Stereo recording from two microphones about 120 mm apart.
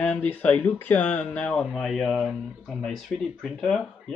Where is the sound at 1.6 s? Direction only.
5° right (ahead or behind).